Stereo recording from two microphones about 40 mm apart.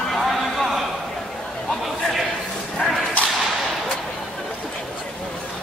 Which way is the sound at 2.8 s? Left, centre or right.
Left.